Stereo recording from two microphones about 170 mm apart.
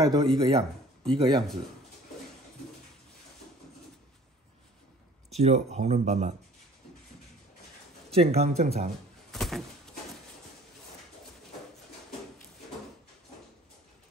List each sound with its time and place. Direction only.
0.0 s speech: 25° right (ahead or behind)
5.4 s speech: 40° right (ahead or behind)
8.1 s speech: 35° right (ahead or behind)
9.3 s a sound: centre (ahead or behind)